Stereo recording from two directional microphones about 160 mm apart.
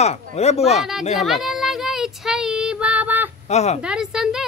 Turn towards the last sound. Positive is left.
turn(degrees=-5)  # may be behind; listen again after turning